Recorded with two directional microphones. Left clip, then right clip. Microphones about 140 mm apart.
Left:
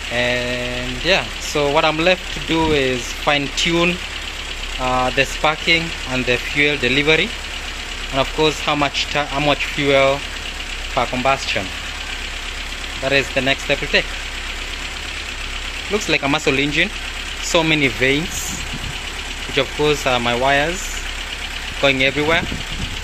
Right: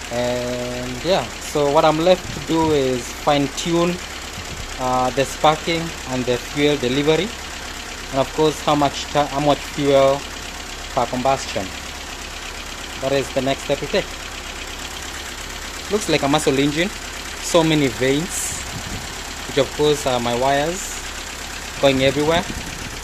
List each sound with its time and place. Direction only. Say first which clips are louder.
0.1 s engine: left 3 dB; 10° right (ahead or behind)
1.0 s speech: left 2 dB; 15° right (ahead or behind)
4.8 s speech: left 1 dB; 5° left (ahead or behind)
5.1 s speech: right 1 dB; 15° right (ahead or behind)
11.3 s speech: left 3 dB; 10° right (ahead or behind)
13.0 s speech: left 3 dB; 10° right (ahead or behind)
16.1 s speech: even; 15° right (ahead or behind)
19.8 s speech: left 3 dB; 15° right (ahead or behind)
21.8 s speech: even; 15° right (ahead or behind)